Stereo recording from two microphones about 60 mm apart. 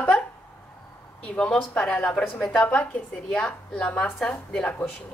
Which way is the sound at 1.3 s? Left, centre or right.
Centre.